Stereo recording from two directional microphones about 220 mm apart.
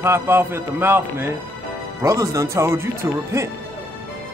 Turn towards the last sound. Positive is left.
turn(degrees=-15)  # may be behind; listen again after turning